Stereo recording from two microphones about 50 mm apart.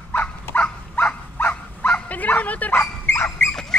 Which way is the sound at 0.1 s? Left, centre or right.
Left.